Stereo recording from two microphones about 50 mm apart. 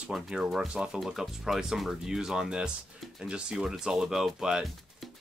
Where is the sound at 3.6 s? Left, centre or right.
Centre.